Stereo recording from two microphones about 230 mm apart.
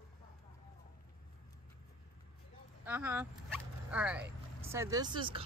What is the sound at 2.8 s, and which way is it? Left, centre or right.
Speech, centre.